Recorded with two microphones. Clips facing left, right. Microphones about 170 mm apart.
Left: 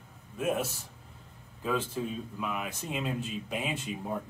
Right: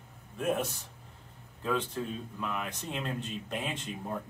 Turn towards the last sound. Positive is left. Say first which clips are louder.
# left 2 dB
turn(degrees=5)  # may be behind; listen again after turning